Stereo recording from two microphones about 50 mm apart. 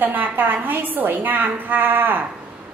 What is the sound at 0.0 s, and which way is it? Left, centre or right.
A woman's voice, right.